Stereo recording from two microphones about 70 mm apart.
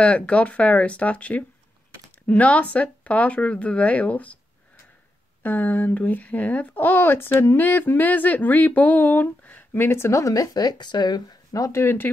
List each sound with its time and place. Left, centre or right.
0.0 s speech: centre
5.4 s speech: left
11.8 s speech: left